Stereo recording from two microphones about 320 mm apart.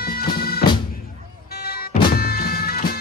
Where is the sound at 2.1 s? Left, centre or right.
Left.